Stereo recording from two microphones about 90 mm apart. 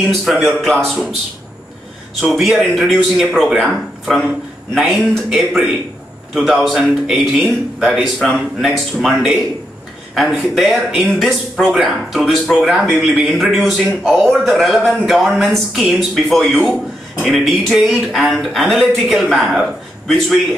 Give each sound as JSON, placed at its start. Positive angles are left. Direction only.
{"t": 0.0, "sound": "speech", "side_deg": 0}
{"t": 2.3, "sound": "speech", "side_deg": -5}
{"t": 10.4, "sound": "speech", "side_deg": 0}